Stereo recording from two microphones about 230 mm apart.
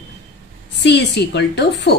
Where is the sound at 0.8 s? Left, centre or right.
Left.